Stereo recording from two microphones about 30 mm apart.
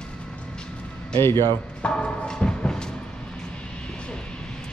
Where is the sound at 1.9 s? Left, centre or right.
Left.